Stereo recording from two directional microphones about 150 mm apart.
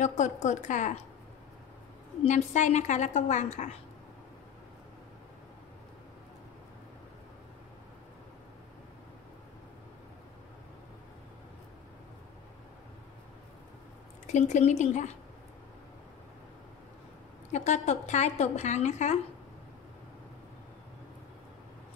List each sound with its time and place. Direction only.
0.0 s a woman's voice: 55° left (ahead or behind)
2.2 s a woman's voice: 50° left (ahead or behind)
14.2 s a woman's voice: 55° left (ahead or behind)
17.5 s a woman's voice: 50° left (ahead or behind)